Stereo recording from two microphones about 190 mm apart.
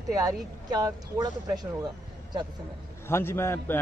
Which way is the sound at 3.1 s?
15° left (ahead or behind).